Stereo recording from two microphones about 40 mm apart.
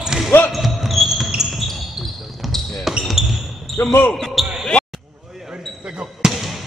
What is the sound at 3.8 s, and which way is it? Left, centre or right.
Speech, left.